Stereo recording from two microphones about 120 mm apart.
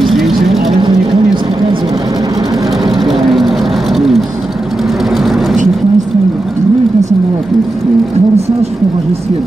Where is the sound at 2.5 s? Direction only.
Centre (ahead or behind).